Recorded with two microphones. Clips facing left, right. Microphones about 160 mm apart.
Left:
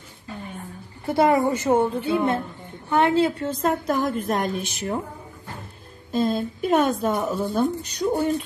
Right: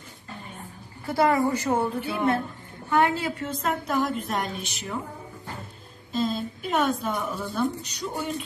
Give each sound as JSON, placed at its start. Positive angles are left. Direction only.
{"t": 1.0, "sound": "a woman's voice", "side_deg": 25}
{"t": 3.6, "sound": "a woman's voice", "side_deg": 50}
{"t": 6.1, "sound": "a woman's voice", "side_deg": 55}